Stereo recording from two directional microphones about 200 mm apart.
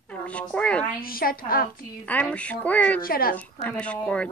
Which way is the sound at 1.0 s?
45° left (ahead or behind).